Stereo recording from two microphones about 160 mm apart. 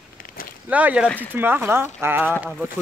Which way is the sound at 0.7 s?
10° right (ahead or behind).